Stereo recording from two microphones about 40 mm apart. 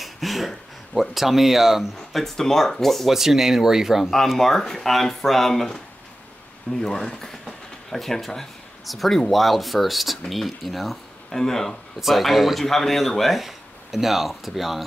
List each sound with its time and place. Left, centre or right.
0.0 s a sound: centre
1.1 s speech: centre
2.0 s speech: centre
3.1 s speech: centre
4.0 s speech: centre
6.8 s speech: centre
12.0 s speech: centre